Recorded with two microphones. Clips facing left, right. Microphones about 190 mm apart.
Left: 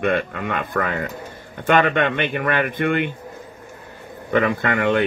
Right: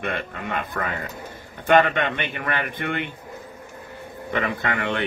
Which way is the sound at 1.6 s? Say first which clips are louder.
Left 1 dB; 50° left (ahead or behind).